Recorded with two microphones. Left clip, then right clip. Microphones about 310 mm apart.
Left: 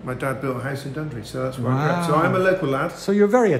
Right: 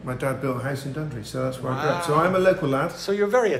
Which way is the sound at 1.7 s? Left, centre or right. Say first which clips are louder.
Left 2 dB; left.